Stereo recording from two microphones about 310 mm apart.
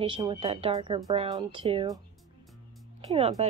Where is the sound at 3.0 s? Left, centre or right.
Centre.